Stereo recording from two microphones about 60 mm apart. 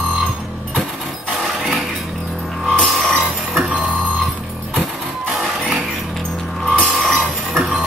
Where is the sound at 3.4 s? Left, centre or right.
Centre.